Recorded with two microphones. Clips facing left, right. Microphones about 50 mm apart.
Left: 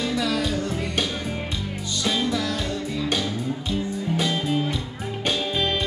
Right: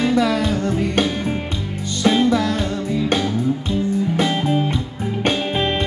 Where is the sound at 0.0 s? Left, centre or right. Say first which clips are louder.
Right 7 dB; right.